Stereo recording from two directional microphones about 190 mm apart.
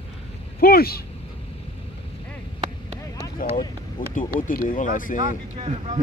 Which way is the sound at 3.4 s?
45° left (ahead or behind).